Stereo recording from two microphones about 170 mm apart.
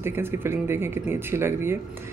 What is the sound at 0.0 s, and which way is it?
Speech, 15° right (ahead or behind).